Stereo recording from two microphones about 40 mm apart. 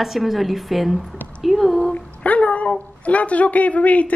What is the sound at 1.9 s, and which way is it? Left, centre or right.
Speech, left.